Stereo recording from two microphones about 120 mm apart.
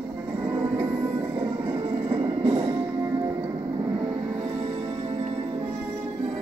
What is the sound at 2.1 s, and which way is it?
Music, 30° right (ahead or behind).